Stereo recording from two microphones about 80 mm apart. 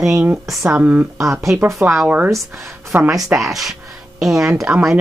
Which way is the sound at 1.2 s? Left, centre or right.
Right.